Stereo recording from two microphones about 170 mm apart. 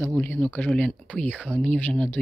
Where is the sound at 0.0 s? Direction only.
10° left (ahead or behind).